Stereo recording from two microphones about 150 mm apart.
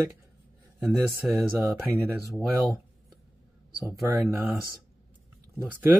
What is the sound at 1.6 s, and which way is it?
Speech, 15° right (ahead or behind).